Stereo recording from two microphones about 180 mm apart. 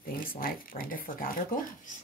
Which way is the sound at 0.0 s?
50° left (ahead or behind).